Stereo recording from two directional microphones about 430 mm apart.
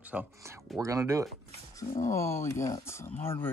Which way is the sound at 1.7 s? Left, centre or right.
Centre.